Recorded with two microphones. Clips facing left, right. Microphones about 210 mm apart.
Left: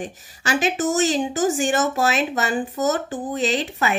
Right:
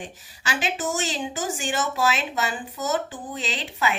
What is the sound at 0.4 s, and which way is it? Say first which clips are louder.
A woman's voice: left 6 dB; 45° left (ahead or behind).